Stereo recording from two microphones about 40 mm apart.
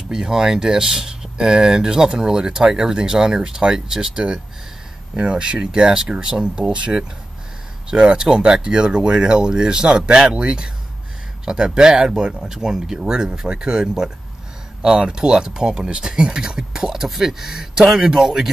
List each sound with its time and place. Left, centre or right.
0.1 s speech: centre; by 6.9 s right
7.9 s speech: centre